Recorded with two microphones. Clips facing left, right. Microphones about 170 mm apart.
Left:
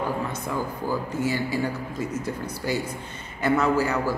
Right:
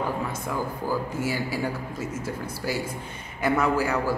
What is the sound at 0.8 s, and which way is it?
Speech, 10° right (ahead or behind).